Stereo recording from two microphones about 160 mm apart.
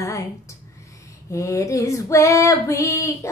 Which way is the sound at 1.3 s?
20° left (ahead or behind).